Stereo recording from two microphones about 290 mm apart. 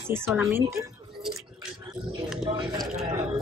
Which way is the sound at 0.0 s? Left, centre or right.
Centre.